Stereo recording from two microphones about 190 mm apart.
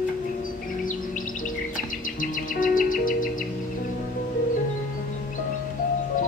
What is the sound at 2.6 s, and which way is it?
Music, 45° left (ahead or behind).